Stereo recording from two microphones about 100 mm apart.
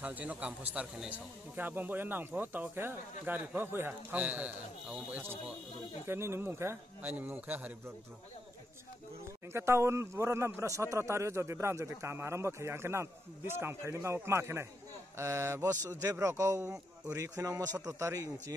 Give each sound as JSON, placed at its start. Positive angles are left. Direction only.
{"t": 0.0, "sound": "a man's voice", "side_deg": -15}
{"t": 9.5, "sound": "a man's voice", "side_deg": -25}